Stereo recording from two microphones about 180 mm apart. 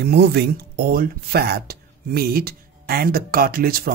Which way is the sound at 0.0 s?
65° right (ahead or behind).